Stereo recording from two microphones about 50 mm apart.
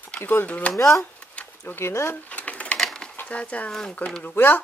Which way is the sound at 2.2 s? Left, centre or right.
Left.